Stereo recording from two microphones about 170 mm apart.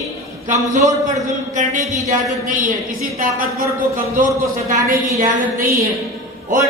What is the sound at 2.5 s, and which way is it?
Speech, 50° right (ahead or behind).